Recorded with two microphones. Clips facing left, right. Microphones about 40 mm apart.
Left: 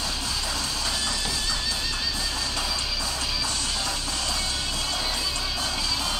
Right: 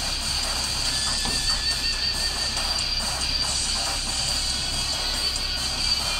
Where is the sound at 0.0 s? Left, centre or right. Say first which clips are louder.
Even; left.